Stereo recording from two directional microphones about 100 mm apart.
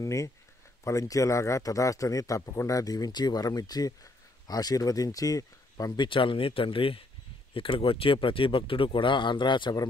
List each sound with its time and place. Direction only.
0.0 s speech: 30° left (ahead or behind)
5.9 s speech: 55° left (ahead or behind)